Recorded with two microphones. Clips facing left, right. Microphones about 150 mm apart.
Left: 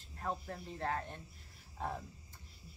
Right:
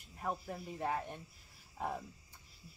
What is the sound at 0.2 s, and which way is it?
Speech, 10° right (ahead or behind).